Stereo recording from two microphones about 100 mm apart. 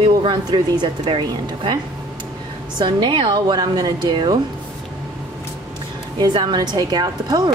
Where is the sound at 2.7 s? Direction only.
50° right (ahead or behind).